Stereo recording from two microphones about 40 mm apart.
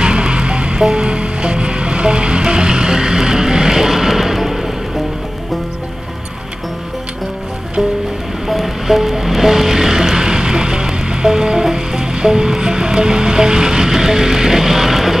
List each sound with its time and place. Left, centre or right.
0.0 s music: right; by 4.6 s centre
8.5 s music: centre